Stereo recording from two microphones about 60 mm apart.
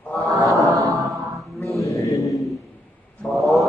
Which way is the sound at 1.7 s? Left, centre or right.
Left.